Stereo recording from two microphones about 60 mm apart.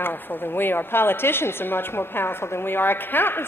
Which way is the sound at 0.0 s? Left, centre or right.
Left.